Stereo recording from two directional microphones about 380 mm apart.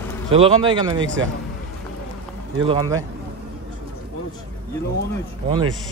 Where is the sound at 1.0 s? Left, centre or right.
Right.